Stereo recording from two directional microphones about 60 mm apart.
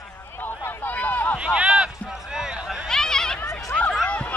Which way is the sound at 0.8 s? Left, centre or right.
Left.